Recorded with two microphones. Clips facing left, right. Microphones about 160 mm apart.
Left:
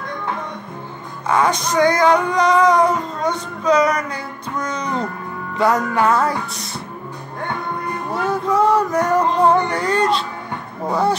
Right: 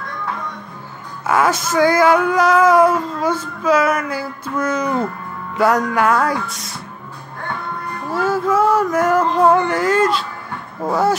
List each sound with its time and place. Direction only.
1.2 s male singing: 5° right (ahead or behind)
7.4 s music: 20° left (ahead or behind)
8.2 s male singing: 5° right (ahead or behind)